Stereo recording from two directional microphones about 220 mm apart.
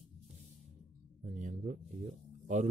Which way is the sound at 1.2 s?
35° right (ahead or behind).